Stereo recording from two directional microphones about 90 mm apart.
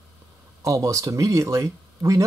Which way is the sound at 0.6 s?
35° right (ahead or behind).